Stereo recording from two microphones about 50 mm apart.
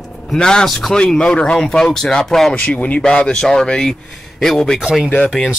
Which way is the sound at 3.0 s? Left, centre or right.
Centre.